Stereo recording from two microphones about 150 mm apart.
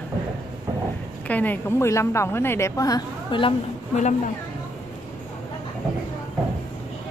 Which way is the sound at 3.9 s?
50° left (ahead or behind).